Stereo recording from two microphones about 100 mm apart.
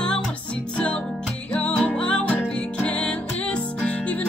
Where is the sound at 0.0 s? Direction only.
10° left (ahead or behind).